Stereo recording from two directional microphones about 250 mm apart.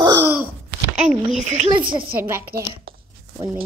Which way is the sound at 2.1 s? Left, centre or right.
Centre.